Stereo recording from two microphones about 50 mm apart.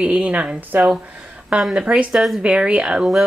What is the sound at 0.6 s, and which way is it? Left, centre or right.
Speech, right.